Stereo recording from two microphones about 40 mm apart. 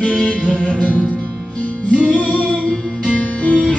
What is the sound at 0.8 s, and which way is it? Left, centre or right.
Music, left.